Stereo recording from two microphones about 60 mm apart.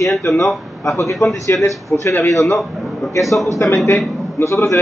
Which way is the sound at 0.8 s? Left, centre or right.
Left.